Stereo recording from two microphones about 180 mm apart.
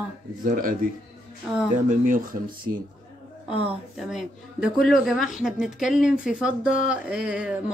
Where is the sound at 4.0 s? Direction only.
Centre (ahead or behind).